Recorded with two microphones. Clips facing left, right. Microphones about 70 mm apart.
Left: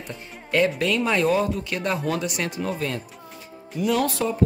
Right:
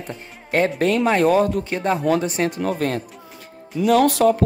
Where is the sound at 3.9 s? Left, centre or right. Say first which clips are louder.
Right 8 dB; right.